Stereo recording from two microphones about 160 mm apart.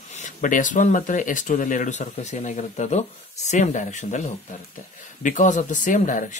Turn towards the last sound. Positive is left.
turn(degrees=50)  # may be behind; listen again after turning